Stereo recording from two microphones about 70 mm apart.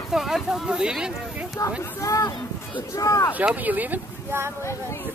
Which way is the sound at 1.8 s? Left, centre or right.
Left.